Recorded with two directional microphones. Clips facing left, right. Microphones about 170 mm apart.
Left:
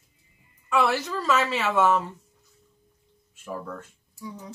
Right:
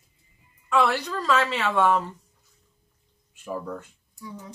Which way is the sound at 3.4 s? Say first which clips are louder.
Right 2 dB; 15° right (ahead or behind).